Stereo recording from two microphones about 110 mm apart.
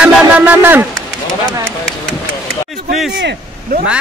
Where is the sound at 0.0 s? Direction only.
15° right (ahead or behind).